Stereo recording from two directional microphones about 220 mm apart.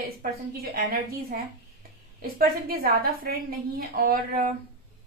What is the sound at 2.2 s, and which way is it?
A woman's voice, 45° right (ahead or behind).